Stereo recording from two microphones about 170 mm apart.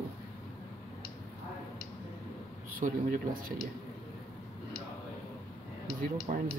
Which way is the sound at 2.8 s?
55° right (ahead or behind).